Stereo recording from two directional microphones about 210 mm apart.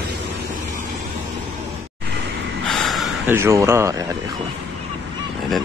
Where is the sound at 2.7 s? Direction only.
Centre (ahead or behind).